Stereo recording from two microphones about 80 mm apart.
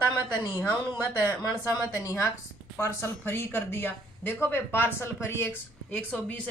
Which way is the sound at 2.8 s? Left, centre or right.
Left.